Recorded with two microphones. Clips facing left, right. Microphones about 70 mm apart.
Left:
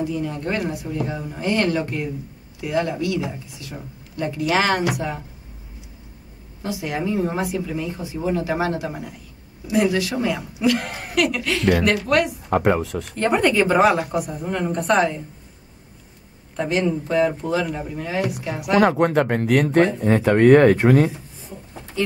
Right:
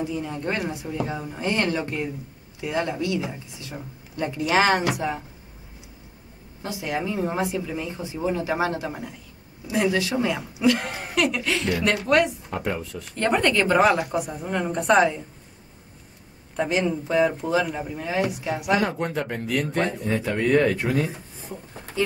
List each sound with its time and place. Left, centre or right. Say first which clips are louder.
0.0 s speech: left 3 dB; centre
6.6 s speech: left 3 dB; centre
12.4 s speech: left 9 dB; left
13.1 s speech: left 2 dB; centre
16.5 s speech: left 2 dB; centre
18.8 s speech: left 9 dB; left
22.0 s speech: left 1 dB; centre